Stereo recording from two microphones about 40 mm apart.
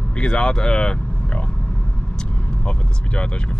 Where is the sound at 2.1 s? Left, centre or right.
Left.